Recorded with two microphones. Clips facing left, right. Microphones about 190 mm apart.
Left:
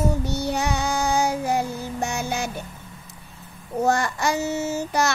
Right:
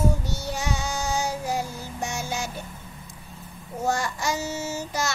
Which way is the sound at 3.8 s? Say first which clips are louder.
Left 5 dB; 60° left (ahead or behind).